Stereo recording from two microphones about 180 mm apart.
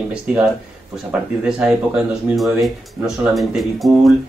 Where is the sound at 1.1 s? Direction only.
5° right (ahead or behind).